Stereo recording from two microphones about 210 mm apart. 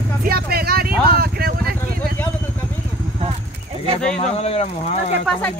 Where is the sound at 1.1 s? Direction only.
45° right (ahead or behind).